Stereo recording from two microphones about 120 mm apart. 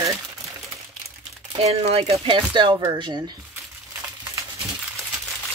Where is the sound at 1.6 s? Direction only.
55° right (ahead or behind); by 3.3 s 35° right (ahead or behind).